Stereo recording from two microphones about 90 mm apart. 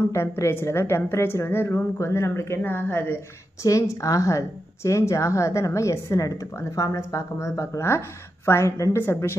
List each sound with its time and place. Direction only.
0.0 s a woman's voice: 30° left (ahead or behind)
3.6 s a woman's voice: 35° left (ahead or behind)